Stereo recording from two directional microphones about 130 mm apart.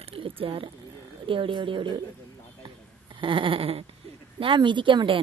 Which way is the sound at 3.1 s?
40° right (ahead or behind).